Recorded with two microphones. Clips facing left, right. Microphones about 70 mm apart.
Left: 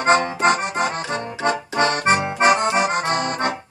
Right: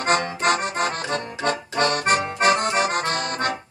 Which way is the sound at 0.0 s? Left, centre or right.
Left.